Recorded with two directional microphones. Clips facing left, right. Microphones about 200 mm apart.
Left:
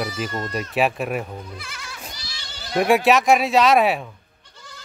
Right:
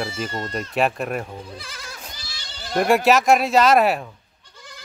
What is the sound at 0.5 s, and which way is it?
Speech, 5° left (ahead or behind).